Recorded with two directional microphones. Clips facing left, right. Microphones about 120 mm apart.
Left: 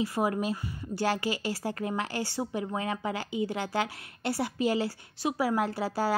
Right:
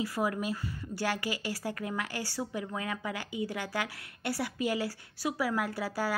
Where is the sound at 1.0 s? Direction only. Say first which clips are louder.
Left 4 dB; 25° left (ahead or behind).